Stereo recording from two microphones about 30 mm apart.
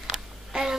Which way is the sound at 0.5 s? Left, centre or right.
Centre.